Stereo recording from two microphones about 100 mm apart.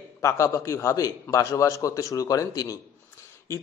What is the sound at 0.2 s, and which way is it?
A man's voice, 30° left (ahead or behind).